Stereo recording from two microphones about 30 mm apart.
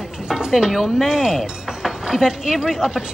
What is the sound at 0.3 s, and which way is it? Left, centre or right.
Speech, right.